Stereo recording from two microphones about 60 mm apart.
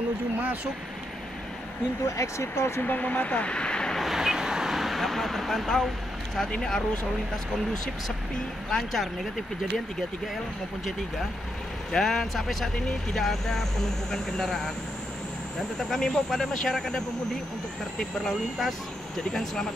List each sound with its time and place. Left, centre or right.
2.0 s speech: left
2.8 s speech: left
4.0 s vehicle: centre
6.5 s speech: centre
8.6 s speech: centre
11.9 s speech: centre
15.8 s speech: centre